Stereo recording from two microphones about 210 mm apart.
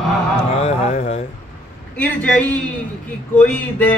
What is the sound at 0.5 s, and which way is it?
Speech, 30° left (ahead or behind).